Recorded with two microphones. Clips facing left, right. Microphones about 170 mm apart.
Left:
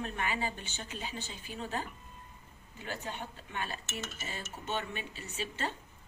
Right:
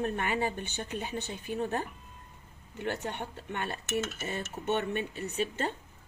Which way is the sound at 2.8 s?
65° right (ahead or behind).